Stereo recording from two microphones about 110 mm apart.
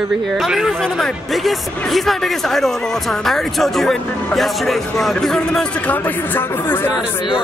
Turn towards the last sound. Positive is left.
turn(degrees=50)  # may be behind; listen again after turning